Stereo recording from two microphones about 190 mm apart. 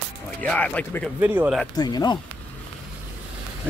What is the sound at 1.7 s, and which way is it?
Speech, 20° left (ahead or behind).